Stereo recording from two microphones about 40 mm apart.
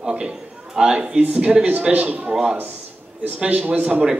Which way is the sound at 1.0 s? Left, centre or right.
Right.